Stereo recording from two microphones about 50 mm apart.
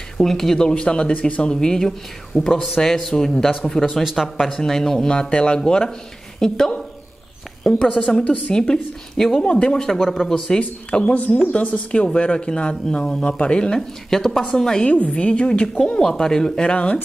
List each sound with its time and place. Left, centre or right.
0.2 s speech: centre
4.0 s speech: centre
4.5 s speech: centre
7.9 s speech: left
9.4 s speech: left
10.6 s speech: left
13.7 s speech: centre; by 15.8 s left
16.0 s speech: centre